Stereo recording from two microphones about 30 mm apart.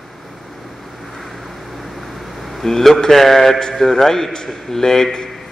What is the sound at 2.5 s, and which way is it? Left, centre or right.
Speech, centre.